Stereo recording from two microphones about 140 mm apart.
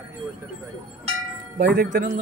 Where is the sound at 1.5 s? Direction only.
90° right.